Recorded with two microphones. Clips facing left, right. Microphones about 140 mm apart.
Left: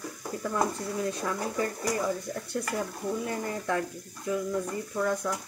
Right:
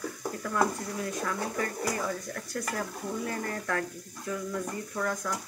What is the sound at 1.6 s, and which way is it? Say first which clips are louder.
Speech: left 2 dB; 25° left (ahead or behind).